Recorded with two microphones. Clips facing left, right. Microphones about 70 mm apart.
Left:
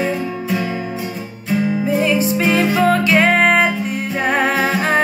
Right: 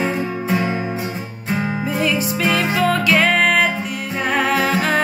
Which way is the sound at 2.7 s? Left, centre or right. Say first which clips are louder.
Left 1 dB; left.